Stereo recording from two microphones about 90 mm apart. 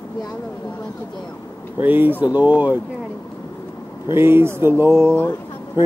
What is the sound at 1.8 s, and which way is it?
Speech, 20° right (ahead or behind).